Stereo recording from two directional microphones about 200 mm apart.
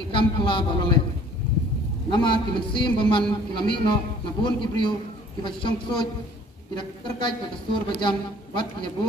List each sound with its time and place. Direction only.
0.1 s a man's voice: 25° left (ahead or behind)
2.0 s a man's voice: 25° left (ahead or behind)